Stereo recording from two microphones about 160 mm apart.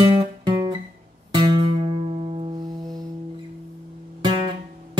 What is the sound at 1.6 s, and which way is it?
Music, 40° right (ahead or behind).